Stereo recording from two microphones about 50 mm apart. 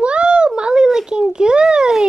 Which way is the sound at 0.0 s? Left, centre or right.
Right.